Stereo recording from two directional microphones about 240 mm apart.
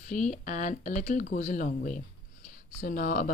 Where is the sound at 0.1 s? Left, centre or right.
Left.